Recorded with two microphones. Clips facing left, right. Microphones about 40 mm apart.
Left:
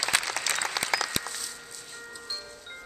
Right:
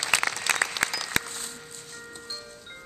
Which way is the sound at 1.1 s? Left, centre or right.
Right.